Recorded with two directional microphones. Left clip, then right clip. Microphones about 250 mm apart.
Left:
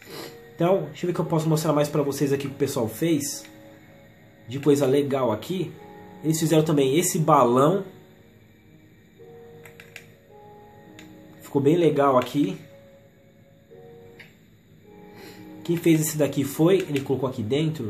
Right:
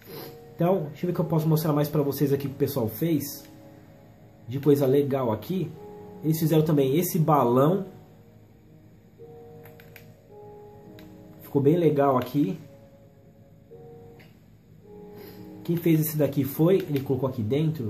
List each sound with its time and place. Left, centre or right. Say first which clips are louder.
0.1 s speech: left 2 dB; centre
4.5 s speech: left 1 dB; centre
11.5 s speech: left 2 dB; centre
15.6 s speech: left 3 dB; centre